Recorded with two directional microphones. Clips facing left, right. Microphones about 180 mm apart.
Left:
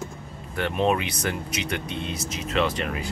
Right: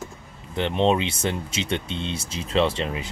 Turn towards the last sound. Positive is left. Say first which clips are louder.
# right 2 dB
turn(degrees=-25)  # may be behind; listen again after turning